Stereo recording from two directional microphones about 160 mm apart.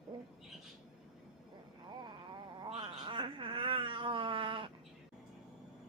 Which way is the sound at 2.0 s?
30° right (ahead or behind).